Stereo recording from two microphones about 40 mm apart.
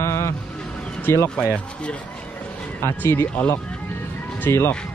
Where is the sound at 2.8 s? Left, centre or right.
Left.